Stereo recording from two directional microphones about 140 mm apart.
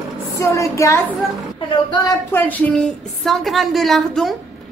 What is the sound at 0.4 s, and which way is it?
Speech, 20° left (ahead or behind).